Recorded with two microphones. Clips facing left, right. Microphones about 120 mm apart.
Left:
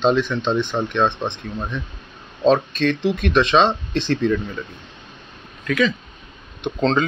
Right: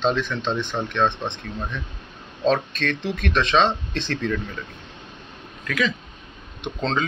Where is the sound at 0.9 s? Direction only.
20° left (ahead or behind).